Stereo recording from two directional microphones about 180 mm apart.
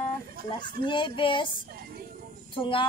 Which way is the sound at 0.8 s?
25° left (ahead or behind).